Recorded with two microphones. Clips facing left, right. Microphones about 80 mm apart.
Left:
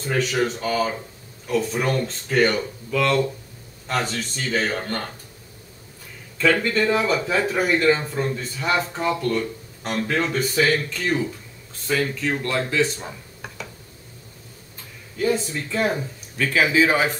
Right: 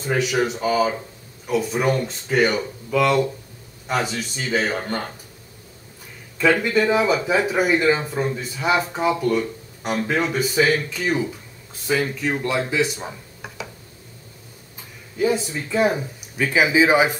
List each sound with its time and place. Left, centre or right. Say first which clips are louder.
0.0 s speech: right 1 dB; centre
6.3 s speech: right 2 dB; centre
15.1 s speech: right 1 dB; centre